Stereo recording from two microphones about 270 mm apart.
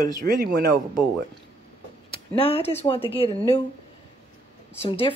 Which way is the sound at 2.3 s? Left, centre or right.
Left.